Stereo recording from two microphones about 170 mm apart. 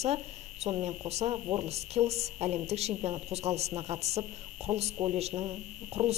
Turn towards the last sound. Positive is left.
turn(degrees=-40)  # may be behind; listen again after turning